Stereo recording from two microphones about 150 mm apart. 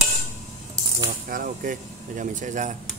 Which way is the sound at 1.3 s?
65° right (ahead or behind).